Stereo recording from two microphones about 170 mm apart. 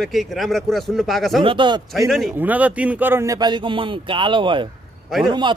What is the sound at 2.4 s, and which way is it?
Speech, 10° right (ahead or behind).